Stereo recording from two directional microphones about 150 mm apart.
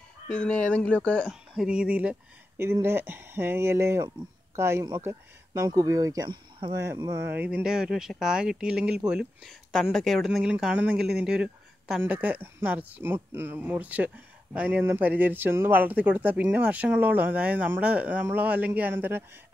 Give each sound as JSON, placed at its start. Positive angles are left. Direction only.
{"t": 0.3, "sound": "speech", "side_deg": 5}